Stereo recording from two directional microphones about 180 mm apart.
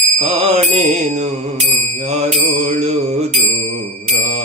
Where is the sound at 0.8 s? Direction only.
40° right (ahead or behind).